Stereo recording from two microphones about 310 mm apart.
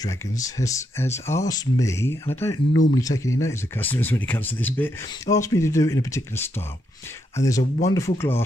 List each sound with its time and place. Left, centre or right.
0.0 s speech: centre
2.7 s speech: left
3.0 s speech: centre